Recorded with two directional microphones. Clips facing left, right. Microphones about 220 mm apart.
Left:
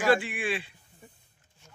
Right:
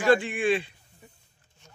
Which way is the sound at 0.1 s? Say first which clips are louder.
Right 6 dB; 5° left (ahead or behind).